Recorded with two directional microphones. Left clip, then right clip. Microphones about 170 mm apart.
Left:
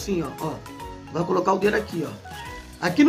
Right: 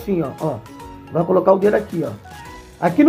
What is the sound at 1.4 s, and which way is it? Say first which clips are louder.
Speech: right 7 dB; 40° right (ahead or behind).